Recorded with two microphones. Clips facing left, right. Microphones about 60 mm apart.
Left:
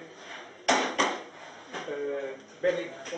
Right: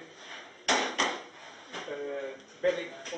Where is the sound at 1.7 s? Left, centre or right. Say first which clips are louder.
Left 4 dB; centre.